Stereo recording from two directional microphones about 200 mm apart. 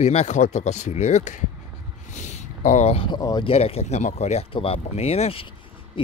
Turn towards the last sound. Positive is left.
turn(degrees=30)  # may be behind; listen again after turning